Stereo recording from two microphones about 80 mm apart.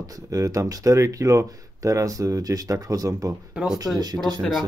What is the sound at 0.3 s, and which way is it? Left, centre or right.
Speech, right.